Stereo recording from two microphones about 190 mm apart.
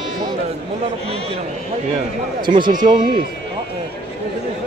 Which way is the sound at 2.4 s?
25° right (ahead or behind).